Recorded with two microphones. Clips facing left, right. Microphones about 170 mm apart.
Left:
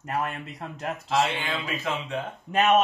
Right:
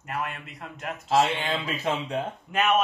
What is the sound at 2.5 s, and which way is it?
Speech, 35° left (ahead or behind).